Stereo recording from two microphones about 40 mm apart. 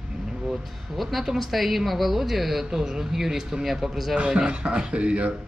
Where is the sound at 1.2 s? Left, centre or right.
Centre.